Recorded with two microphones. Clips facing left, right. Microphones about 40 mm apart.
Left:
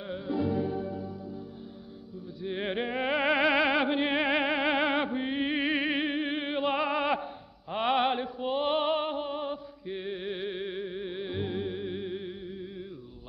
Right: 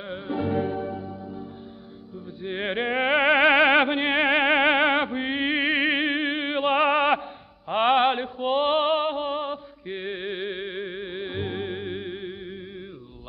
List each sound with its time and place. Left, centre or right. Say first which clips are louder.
0.0 s music: right 2 dB; right